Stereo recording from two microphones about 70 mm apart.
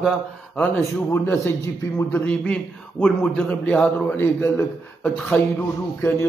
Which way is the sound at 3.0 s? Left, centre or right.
Centre.